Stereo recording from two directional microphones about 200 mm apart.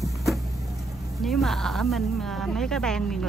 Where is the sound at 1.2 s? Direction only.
Centre (ahead or behind).